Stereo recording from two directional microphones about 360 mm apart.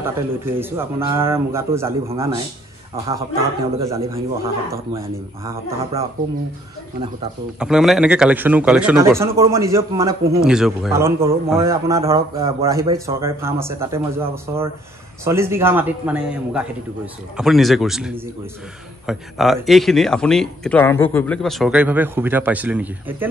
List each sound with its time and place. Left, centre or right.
0.0 s speech: centre
3.7 s speech: centre
7.5 s speech: centre